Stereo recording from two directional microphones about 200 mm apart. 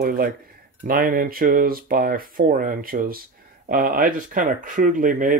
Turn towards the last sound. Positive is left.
turn(degrees=-40)  # may be behind; listen again after turning